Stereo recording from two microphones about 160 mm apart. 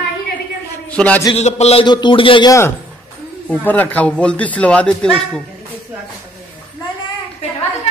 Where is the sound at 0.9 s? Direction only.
5° left (ahead or behind).